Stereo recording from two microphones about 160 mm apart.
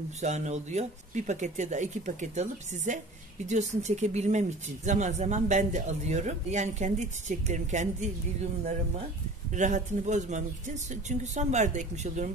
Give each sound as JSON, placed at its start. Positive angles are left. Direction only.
{"t": 0.2, "sound": "speech", "side_deg": -45}
{"t": 9.5, "sound": "speech", "side_deg": -50}